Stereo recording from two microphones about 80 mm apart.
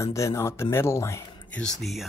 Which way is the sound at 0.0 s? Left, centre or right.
Left.